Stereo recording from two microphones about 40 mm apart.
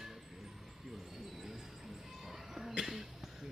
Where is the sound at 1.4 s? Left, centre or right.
Centre.